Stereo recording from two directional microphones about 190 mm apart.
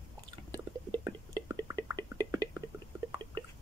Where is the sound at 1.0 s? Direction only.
20° right (ahead or behind).